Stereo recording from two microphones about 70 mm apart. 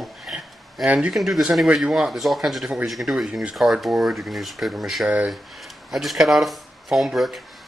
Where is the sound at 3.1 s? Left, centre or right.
Centre.